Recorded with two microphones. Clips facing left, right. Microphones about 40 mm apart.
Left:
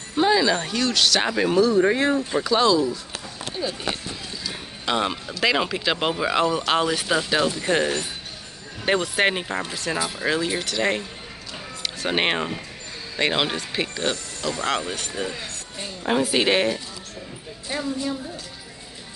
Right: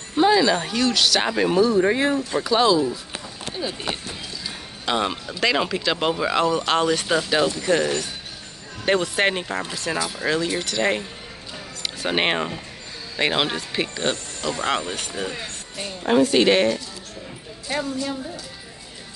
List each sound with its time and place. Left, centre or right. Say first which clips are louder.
0.1 s speech: right 2 dB; centre
4.8 s speech: right 1 dB; centre
7.6 s speech: right 1 dB; centre
8.8 s speech: right 1 dB; centre
16.0 s speech: right 4 dB; centre